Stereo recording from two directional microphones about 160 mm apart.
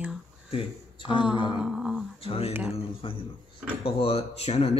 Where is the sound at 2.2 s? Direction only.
35° left (ahead or behind).